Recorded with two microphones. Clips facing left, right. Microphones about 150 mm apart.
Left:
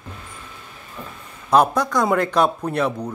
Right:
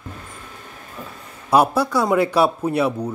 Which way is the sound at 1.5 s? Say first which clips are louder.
Even; 10° right (ahead or behind).